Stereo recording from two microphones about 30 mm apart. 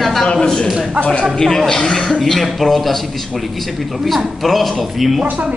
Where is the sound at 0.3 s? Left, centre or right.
Left.